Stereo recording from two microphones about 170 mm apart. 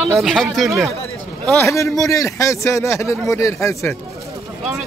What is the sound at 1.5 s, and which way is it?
Speech, 15° left (ahead or behind).